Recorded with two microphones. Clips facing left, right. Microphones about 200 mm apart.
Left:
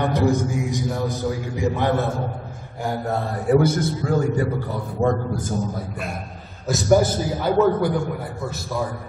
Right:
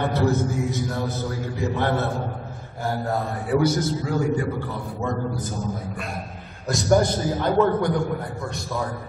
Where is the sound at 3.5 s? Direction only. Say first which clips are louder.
Left 3 dB; 55° left (ahead or behind).